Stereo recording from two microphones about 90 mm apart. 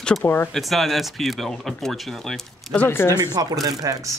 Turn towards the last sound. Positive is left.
turn(degrees=-40)  # may be behind; listen again after turning